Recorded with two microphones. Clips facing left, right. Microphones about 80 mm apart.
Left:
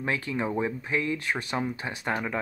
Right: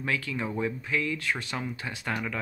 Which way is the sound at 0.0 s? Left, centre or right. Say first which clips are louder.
Left 2 dB; left.